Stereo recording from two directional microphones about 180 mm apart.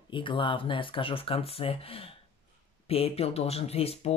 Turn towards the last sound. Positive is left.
turn(degrees=35)  # may be behind; listen again after turning